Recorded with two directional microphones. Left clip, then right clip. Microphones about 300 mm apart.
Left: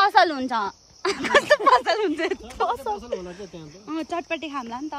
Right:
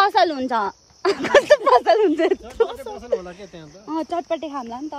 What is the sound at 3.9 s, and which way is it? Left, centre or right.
Speech, centre.